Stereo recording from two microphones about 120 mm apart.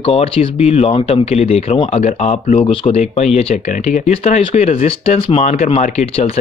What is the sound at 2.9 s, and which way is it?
Speech, 70° left (ahead or behind).